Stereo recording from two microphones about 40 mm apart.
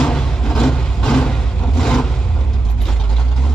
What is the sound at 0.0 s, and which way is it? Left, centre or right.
Music, centre.